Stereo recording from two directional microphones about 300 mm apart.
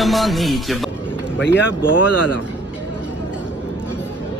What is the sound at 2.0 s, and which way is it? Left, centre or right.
Speech, left.